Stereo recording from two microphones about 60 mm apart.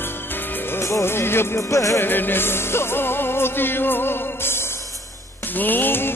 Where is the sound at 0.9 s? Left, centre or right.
Left.